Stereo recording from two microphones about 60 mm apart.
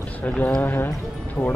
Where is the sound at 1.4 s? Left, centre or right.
Left.